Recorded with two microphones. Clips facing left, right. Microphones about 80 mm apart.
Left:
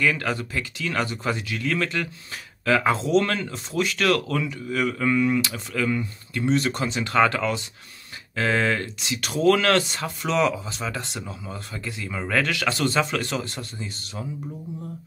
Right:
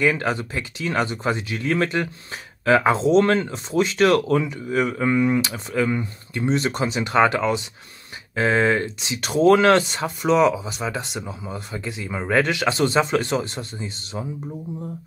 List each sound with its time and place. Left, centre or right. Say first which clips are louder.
0.0 s speech: right 3 dB; right